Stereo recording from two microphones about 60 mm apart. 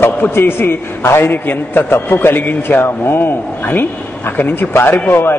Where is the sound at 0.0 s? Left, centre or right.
Left.